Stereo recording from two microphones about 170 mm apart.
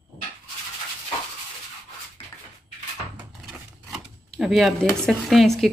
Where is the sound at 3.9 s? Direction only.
Centre (ahead or behind).